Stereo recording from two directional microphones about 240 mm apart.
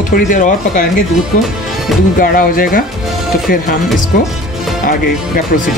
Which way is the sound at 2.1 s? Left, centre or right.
Left.